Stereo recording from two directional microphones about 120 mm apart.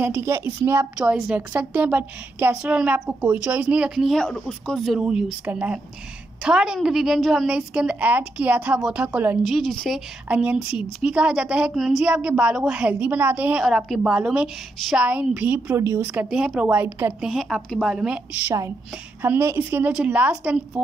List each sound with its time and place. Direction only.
0.0 s a woman's voice: 20° right (ahead or behind)
0.9 s a woman's voice: 5° right (ahead or behind)
9.4 s a woman's voice: centre (ahead or behind)
10.2 s a woman's voice: 10° right (ahead or behind)
13.7 s a woman's voice: centre (ahead or behind)
15.0 s a woman's voice: 10° right (ahead or behind)
17.2 s a woman's voice: centre (ahead or behind)
19.2 s a woman's voice: 20° right (ahead or behind)
19.9 s a woman's voice: 10° right (ahead or behind)